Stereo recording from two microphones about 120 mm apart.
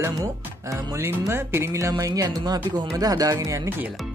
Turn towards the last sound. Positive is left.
turn(degrees=-30)  # may be behind; listen again after turning